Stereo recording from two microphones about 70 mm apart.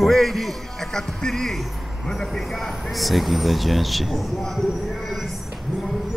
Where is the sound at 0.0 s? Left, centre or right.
Centre.